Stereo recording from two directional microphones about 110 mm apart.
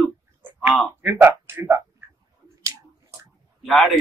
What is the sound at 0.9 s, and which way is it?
Speech, 20° right (ahead or behind).